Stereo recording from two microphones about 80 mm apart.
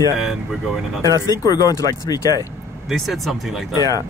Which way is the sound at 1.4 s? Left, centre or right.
Left.